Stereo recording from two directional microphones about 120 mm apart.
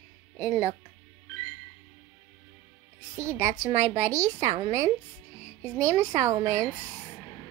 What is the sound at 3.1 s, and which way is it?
Speech, 25° right (ahead or behind).